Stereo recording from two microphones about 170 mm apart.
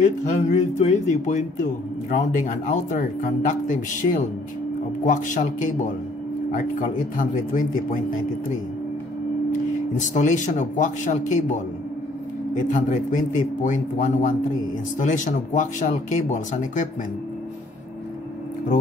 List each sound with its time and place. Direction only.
0.2 s speech: 45° left (ahead or behind)
7.2 s speech: 50° left (ahead or behind)
9.5 s speech: 45° left (ahead or behind)
12.7 s speech: 50° left (ahead or behind)